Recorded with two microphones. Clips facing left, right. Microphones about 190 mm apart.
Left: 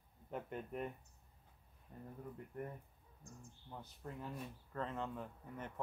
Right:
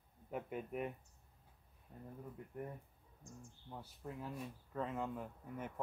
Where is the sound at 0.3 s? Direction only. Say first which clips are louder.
Right 2 dB; 5° right (ahead or behind).